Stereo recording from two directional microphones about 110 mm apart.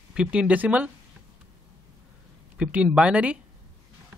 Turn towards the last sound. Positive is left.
turn(degrees=-10)  # may be behind; listen again after turning